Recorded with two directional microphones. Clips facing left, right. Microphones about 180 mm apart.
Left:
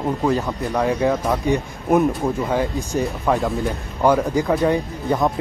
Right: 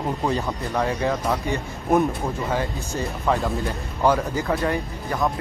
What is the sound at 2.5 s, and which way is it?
Speech, 15° left (ahead or behind).